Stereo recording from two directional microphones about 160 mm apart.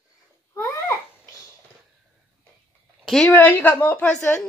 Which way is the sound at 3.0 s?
5° left (ahead or behind).